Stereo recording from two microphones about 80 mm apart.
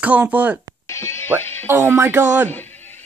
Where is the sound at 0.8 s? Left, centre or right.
Left.